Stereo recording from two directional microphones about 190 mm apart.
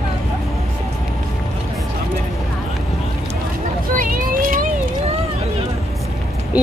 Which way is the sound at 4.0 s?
50° right (ahead or behind).